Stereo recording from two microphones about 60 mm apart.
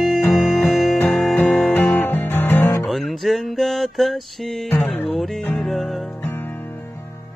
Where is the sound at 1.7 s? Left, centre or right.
Left.